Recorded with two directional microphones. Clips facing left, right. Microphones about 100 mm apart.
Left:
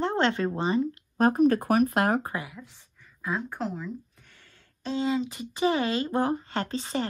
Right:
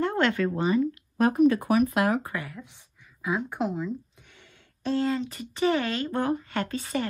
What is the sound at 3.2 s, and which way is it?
Speech, 10° right (ahead or behind).